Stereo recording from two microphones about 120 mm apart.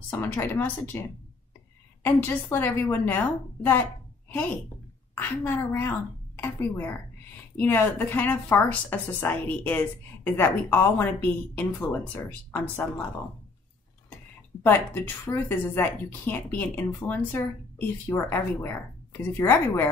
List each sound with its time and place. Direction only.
0.1 s speech: 20° left (ahead or behind)
15.2 s speech: 20° left (ahead or behind)